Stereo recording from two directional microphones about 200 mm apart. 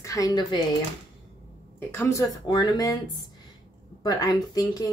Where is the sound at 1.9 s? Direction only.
10° left (ahead or behind).